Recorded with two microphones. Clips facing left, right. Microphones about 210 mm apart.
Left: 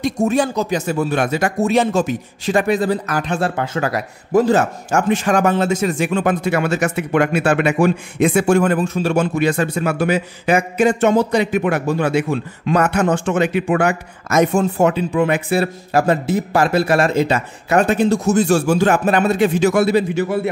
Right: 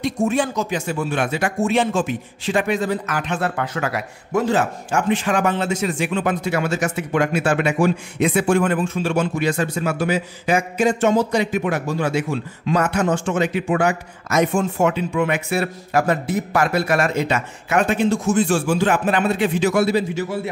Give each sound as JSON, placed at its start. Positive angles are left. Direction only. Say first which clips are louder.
{"t": 0.0, "sound": "a man's voice", "louder": "left 3 dB", "side_deg": 40}
{"t": 14.4, "sound": "speech", "louder": "left 3 dB", "side_deg": 40}